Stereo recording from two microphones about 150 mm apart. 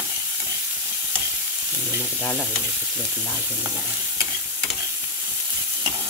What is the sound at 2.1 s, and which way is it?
Frying, 15° left (ahead or behind).